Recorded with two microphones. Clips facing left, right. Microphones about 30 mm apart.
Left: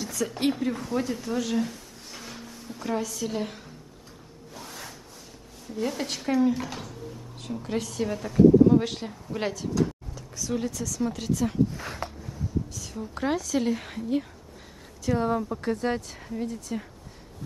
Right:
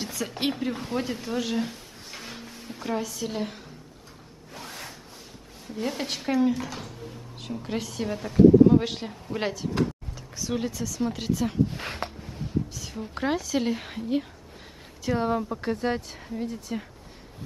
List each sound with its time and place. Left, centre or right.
0.0 s speech: right
0.8 s a sound: right
2.8 s speech: centre
4.6 s rub: right
5.8 s speech: centre
6.5 s speech: centre; by 11.5 s right
11.7 s a sound: right
12.7 s a sound: centre
13.2 s speech: centre